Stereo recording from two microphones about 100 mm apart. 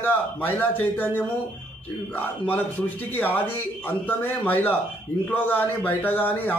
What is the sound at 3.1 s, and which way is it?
A man's voice, 20° left (ahead or behind).